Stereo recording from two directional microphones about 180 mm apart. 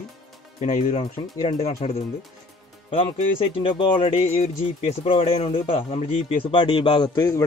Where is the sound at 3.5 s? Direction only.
30° left (ahead or behind).